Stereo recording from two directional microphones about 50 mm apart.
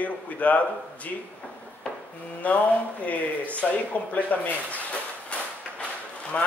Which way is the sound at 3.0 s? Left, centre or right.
Left.